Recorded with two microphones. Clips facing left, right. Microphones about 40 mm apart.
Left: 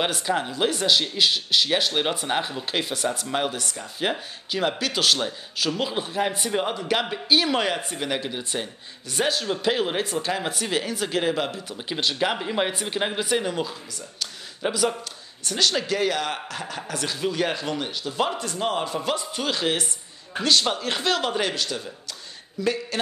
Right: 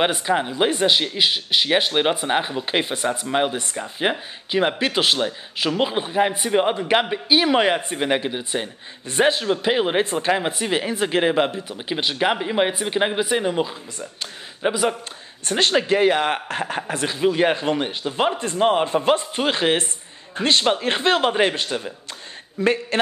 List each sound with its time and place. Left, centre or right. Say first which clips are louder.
0.0 s speech: right 4 dB; right
9.1 s speech: right 6 dB; right
11.7 s a man's voice: right 2 dB; centre; by 22.9 s right